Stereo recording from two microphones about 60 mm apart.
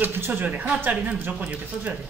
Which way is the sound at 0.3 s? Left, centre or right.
Right.